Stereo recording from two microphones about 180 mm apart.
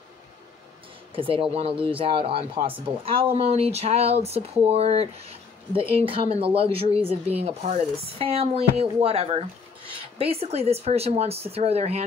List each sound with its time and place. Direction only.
1.1 s speech: 30° right (ahead or behind)